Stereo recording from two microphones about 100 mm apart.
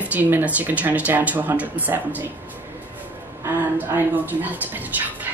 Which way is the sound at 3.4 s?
20° right (ahead or behind).